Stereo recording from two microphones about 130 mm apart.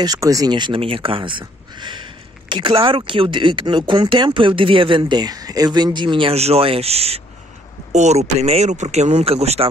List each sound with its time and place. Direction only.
0.0 s speech: 30° right (ahead or behind); by 9.7 s 50° right (ahead or behind)